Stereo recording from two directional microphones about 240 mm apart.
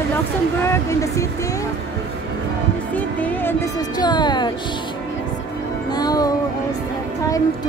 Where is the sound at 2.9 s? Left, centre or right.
Centre.